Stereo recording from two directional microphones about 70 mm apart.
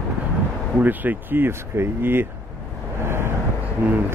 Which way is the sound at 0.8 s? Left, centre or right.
Right.